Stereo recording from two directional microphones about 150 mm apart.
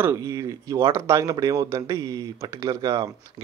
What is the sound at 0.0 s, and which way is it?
Speech, 20° right (ahead or behind).